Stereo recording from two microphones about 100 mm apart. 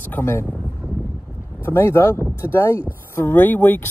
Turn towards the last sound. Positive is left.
turn(degrees=20)  # may be behind; listen again after turning